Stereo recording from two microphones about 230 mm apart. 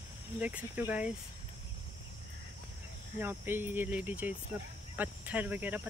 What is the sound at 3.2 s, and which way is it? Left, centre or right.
Speech, centre.